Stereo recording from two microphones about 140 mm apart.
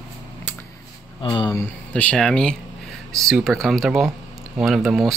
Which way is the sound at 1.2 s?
30° left (ahead or behind).